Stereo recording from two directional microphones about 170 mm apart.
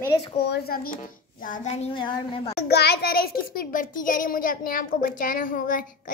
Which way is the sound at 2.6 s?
70° left (ahead or behind).